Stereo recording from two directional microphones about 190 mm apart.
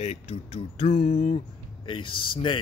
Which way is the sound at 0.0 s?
35° left (ahead or behind).